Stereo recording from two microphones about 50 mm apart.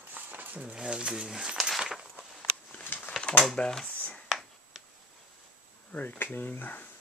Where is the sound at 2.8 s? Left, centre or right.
Left.